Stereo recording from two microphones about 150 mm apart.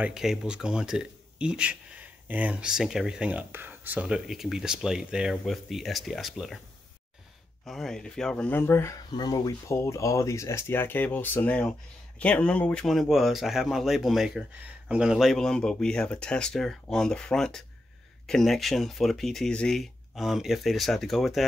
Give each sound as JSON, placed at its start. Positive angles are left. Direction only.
{"t": 0.0, "sound": "speech", "side_deg": -5}
{"t": 7.6, "sound": "speech", "side_deg": 0}
{"t": 9.1, "sound": "speech", "side_deg": 30}